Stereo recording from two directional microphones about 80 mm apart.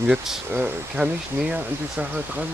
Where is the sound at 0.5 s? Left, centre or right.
Centre.